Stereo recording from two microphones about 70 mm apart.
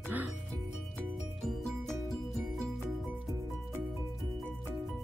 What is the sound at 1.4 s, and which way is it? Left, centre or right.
Music, centre.